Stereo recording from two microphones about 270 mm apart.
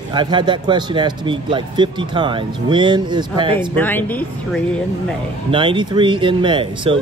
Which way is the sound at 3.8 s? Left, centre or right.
Centre.